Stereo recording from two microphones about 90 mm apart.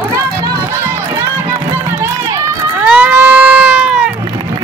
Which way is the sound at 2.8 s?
20° right (ahead or behind).